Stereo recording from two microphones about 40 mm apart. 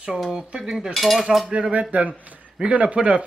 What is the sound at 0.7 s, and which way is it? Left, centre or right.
Cutlery, centre.